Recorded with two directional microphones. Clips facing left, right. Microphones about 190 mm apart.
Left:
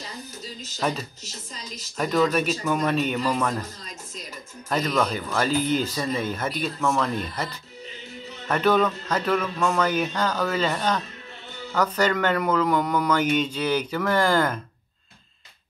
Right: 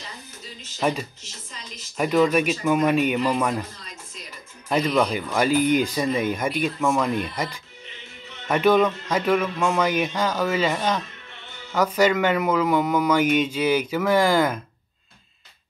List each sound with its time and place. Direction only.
0.7 s speech: 10° right (ahead or behind)
1.2 s speech: 40° left (ahead or behind)
2.0 s speech: 10° right (ahead or behind)
4.6 s speech: 10° right (ahead or behind)